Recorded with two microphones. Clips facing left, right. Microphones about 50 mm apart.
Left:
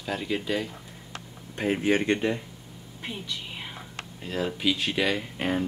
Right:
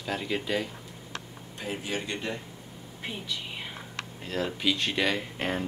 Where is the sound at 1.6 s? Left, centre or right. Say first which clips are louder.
Left 9 dB; left.